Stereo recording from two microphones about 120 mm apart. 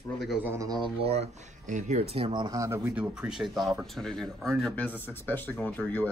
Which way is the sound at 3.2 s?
Centre (ahead or behind).